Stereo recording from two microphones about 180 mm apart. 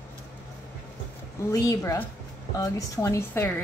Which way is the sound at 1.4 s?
20° left (ahead or behind).